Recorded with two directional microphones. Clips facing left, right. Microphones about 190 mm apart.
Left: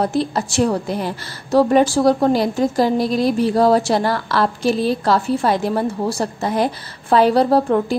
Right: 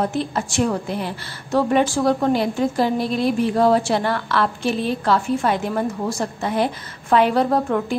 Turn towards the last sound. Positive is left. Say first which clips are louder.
# left 4 dB
turn(degrees=35)  # may be behind; listen again after turning